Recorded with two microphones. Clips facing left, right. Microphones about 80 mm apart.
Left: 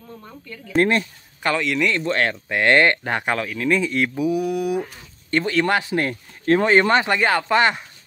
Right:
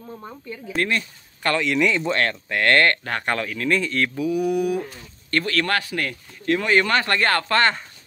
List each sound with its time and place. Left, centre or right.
0.1 s speech: centre
0.7 s speech: left
1.4 s a man's voice: centre
2.1 s speech: centre
3.3 s a man's voice: centre
5.3 s speech: centre